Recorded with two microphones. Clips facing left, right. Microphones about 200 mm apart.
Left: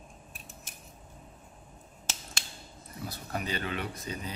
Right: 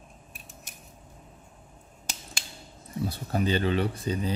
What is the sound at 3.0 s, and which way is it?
Speech, 30° right (ahead or behind).